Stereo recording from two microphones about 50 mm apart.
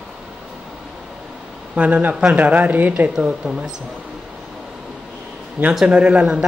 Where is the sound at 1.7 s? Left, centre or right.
Right.